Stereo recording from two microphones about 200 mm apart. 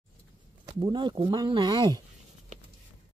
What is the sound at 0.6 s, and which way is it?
Speech, 20° right (ahead or behind).